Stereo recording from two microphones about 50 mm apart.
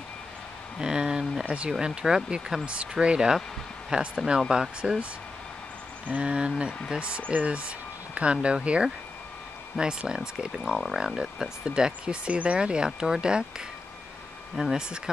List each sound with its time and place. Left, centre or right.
0.7 s a sound: centre
1.5 s speech: centre
6.0 s speech: right
9.8 s speech: centre
10.8 s speech: centre
14.6 s speech: centre